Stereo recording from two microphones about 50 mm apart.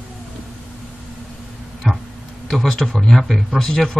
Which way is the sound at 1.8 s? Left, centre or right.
Centre.